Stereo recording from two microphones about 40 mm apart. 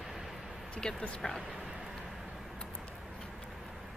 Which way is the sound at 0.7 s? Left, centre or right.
Left.